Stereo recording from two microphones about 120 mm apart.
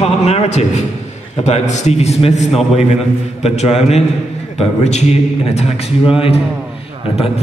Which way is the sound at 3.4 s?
60° left (ahead or behind).